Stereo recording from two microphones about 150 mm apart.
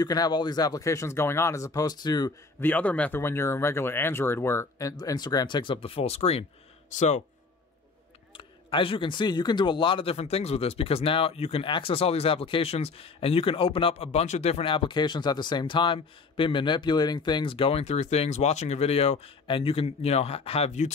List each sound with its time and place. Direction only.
0.0 s speech: 25° left (ahead or behind)
2.6 s speech: 10° left (ahead or behind); by 6.4 s 45° left (ahead or behind)
8.4 s speech: 35° left (ahead or behind)